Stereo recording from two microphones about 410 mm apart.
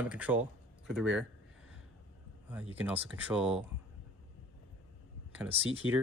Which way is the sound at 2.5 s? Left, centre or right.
Centre.